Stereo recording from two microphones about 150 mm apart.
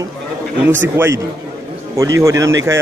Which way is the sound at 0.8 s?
15° right (ahead or behind).